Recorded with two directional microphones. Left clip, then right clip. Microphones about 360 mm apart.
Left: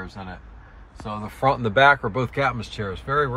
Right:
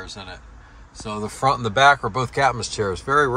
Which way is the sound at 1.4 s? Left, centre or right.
Centre.